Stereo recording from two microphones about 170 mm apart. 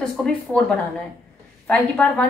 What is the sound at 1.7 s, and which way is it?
Speech, 5° left (ahead or behind).